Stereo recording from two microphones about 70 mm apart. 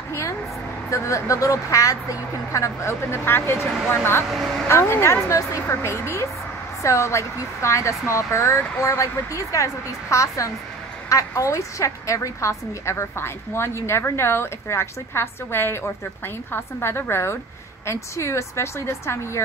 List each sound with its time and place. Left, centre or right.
0.1 s a woman's voice: left